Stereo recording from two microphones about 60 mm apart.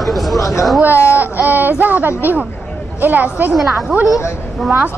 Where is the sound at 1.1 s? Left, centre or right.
Right.